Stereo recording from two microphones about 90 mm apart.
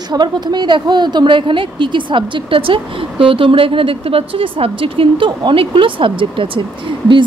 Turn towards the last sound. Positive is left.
turn(degrees=-65)  # may be behind; listen again after turning